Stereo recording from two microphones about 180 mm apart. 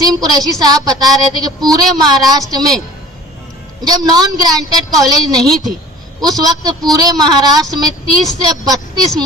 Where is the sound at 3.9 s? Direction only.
20° right (ahead or behind).